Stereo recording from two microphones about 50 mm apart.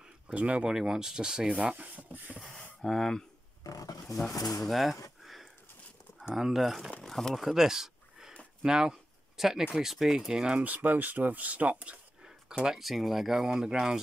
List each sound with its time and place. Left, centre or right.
0.3 s speech: right
0.7 s speech: centre; by 2.3 s right
2.8 s speech: centre
4.6 s speech: centre
5.2 s a sound: centre
6.3 s speech: centre
7.0 s a sound: centre
8.6 s speech: centre
10.5 s speech: right
12.2 s a sound: centre
12.8 s speech: centre